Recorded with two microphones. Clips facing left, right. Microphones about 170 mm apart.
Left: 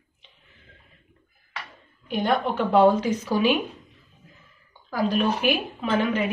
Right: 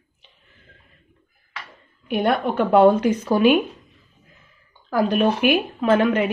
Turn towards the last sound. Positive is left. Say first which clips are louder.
# right 6 dB
turn(degrees=-60)  # may be behind; listen again after turning